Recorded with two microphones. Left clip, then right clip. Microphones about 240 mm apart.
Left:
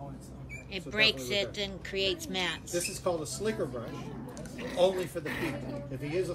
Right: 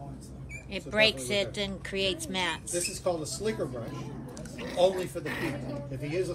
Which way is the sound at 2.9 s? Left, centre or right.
Centre.